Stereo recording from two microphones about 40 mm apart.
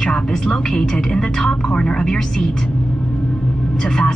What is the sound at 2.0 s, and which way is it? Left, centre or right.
Speech, centre.